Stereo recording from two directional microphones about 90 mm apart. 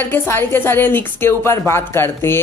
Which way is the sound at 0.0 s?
25° left (ahead or behind).